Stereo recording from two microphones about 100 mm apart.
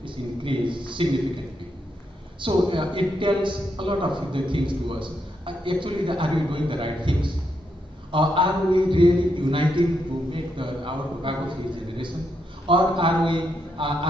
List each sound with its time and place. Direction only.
0.0 s a man's voice: 55° right (ahead or behind)
2.4 s a man's voice: 55° right (ahead or behind)
12.6 s a man's voice: 55° right (ahead or behind)